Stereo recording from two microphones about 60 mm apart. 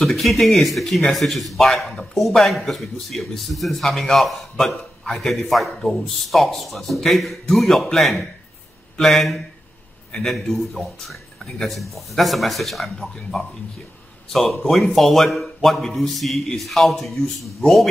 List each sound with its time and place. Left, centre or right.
0.0 s speech: centre
14.7 s speech: centre